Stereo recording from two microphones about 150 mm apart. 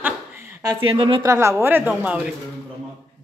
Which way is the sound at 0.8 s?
35° right (ahead or behind).